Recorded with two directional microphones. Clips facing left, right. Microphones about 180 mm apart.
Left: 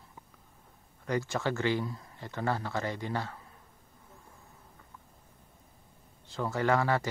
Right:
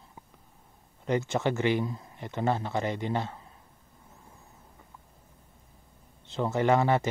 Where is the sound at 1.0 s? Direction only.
20° right (ahead or behind).